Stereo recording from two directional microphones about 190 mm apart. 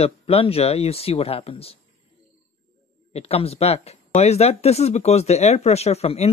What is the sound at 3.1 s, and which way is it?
Speech, 30° left (ahead or behind).